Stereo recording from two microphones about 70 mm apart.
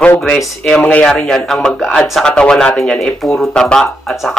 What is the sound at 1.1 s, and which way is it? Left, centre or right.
Speech, centre.